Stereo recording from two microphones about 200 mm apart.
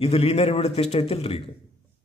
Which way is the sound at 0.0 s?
30° left (ahead or behind).